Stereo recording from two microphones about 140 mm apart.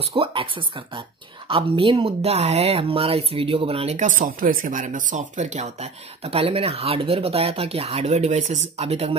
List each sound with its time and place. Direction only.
0.1 s speech: 40° right (ahead or behind)
4.0 s speech: 70° right (ahead or behind); by 9.1 s 50° right (ahead or behind)